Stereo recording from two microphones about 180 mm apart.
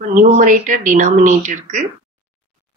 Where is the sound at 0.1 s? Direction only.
45° right (ahead or behind).